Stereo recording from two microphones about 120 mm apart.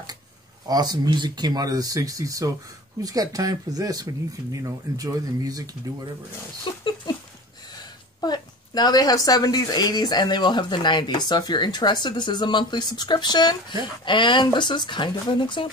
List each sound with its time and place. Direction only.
0.7 s speech: 35° right (ahead or behind)
6.6 s speech: 40° left (ahead or behind)
8.2 s speech: 35° left (ahead or behind)